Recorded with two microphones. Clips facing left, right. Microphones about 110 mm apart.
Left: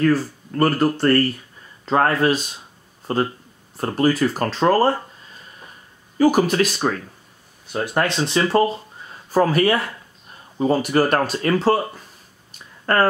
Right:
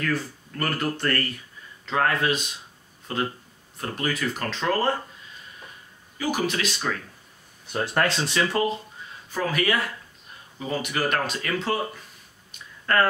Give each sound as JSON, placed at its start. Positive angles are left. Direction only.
{"t": 0.0, "sound": "speech", "side_deg": 35}
{"t": 6.1, "sound": "speech", "side_deg": 40}
{"t": 7.7, "sound": "speech", "side_deg": 15}
{"t": 8.5, "sound": "speech", "side_deg": 35}